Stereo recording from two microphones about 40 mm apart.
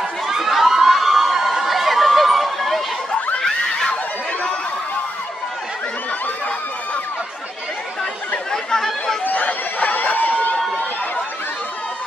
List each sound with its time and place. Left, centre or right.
0.3 s a sound: centre
8.5 s chatter: centre
9.2 s chatter: left